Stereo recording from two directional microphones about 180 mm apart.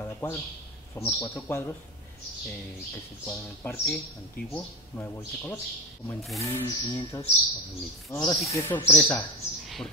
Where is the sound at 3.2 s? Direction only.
10° left (ahead or behind).